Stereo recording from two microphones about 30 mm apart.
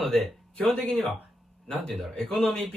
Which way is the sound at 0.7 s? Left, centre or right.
Left.